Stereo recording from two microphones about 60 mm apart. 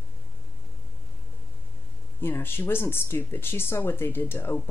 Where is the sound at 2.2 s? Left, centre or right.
Left.